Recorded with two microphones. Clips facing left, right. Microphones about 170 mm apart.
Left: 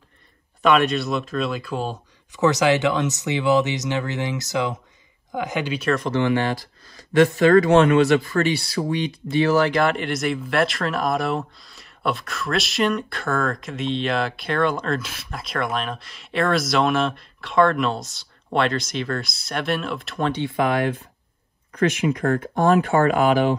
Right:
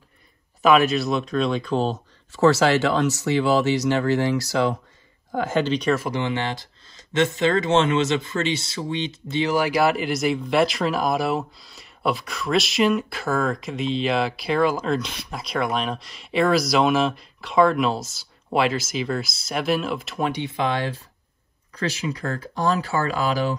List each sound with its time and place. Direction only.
0.6 s speech: centre (ahead or behind)
6.1 s speech: 20° right (ahead or behind)
9.7 s speech: 5° right (ahead or behind)
20.2 s speech: 15° right (ahead or behind)
20.5 s speech: 25° right (ahead or behind)
22.2 s speech: 55° left (ahead or behind)